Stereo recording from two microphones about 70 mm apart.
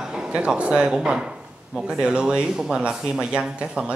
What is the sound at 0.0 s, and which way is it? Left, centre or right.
Speech, centre.